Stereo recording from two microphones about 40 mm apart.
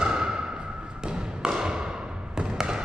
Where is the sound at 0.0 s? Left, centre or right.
Right.